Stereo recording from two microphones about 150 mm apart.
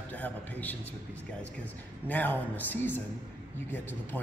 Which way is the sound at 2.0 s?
10° left (ahead or behind).